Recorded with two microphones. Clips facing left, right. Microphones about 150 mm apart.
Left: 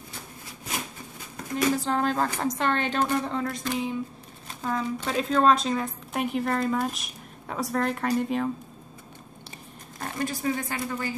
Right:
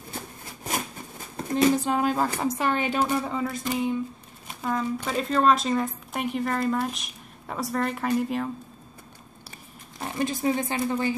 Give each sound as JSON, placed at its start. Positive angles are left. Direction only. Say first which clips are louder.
{"t": 1.3, "sound": "a sound", "louder": "right 5 dB", "side_deg": -30}
{"t": 1.8, "sound": "a woman's voice", "louder": "right 1 dB", "side_deg": -10}
{"t": 10.1, "sound": "speech", "louder": "right 3 dB", "side_deg": -20}